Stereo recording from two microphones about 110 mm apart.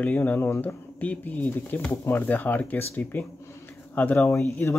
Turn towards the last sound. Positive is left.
turn(degrees=25)  # may be behind; listen again after turning